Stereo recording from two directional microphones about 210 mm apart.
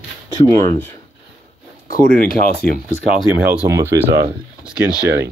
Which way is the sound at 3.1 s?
5° right (ahead or behind).